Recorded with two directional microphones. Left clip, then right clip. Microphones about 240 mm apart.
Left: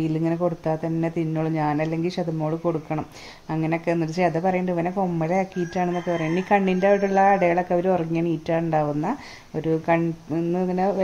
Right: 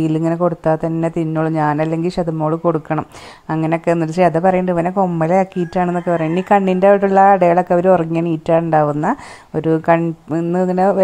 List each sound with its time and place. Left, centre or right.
0.0 s speech: right